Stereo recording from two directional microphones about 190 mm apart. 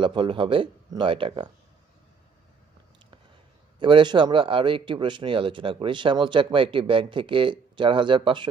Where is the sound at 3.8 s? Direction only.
25° right (ahead or behind).